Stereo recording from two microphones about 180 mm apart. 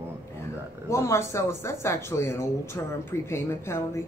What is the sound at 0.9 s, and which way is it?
Speech, 15° left (ahead or behind).